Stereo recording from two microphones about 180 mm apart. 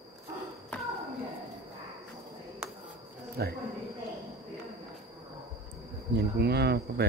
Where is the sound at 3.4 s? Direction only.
60° right (ahead or behind).